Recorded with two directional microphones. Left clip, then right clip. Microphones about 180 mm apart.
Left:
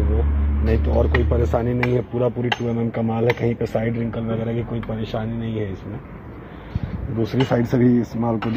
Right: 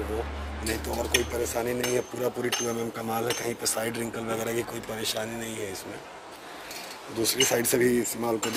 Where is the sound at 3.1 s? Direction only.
25° right (ahead or behind).